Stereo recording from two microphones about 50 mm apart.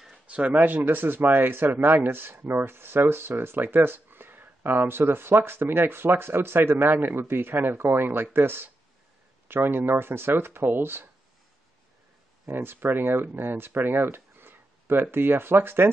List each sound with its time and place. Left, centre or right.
0.6 s speech: right
12.4 s speech: right